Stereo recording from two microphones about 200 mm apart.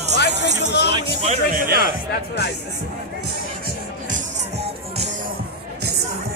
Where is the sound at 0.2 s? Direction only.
60° left (ahead or behind).